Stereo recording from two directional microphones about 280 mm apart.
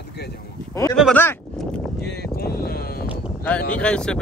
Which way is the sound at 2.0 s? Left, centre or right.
Left.